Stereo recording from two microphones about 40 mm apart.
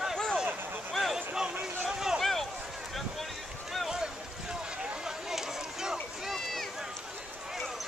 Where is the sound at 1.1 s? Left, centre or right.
Right.